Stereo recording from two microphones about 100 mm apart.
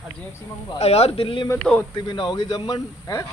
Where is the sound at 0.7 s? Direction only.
90° left; by 1.5 s 65° left (ahead or behind).